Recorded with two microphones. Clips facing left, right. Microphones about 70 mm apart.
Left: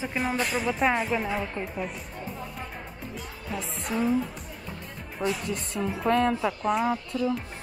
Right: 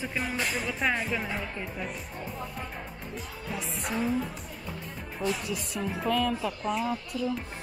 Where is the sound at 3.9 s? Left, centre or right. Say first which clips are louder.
Left 4 dB; centre.